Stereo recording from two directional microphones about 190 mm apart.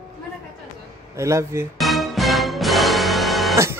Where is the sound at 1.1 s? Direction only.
15° right (ahead or behind).